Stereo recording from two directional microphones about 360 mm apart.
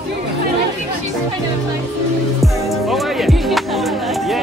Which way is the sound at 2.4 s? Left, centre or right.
Centre.